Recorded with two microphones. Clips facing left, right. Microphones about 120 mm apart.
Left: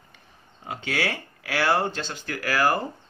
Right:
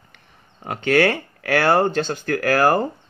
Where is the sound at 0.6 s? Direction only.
60° right (ahead or behind).